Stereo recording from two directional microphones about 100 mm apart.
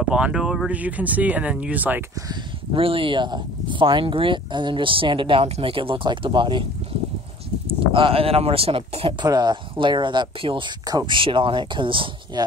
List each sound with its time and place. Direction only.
0.1 s speech: 10° right (ahead or behind)
2.7 s speech: 65° right (ahead or behind)
7.6 s speech: 65° right (ahead or behind)
9.2 s speech: 45° right (ahead or behind)
12.4 s speech: 45° right (ahead or behind)